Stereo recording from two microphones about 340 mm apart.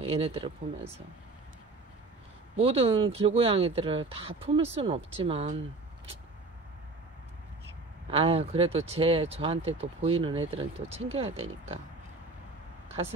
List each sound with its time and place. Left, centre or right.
0.0 s speech: centre
2.5 s speech: centre
8.1 s speech: centre